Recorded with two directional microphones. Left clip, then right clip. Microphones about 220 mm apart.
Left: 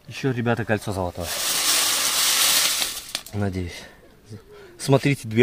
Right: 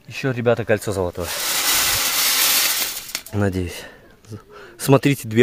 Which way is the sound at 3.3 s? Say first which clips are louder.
Right 10 dB; 45° right (ahead or behind).